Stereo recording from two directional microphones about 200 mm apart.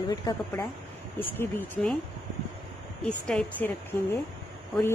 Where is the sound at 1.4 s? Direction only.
10° left (ahead or behind).